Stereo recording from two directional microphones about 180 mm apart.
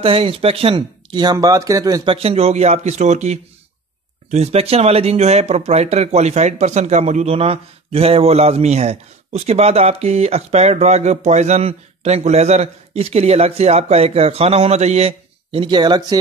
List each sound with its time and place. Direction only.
0.0 s speech: 30° right (ahead or behind)
2.1 s speech: 35° right (ahead or behind)